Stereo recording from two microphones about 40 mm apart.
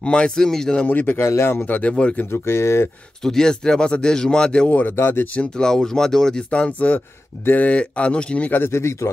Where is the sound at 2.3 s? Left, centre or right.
Left.